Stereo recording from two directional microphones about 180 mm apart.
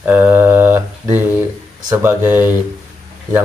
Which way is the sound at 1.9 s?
15° right (ahead or behind).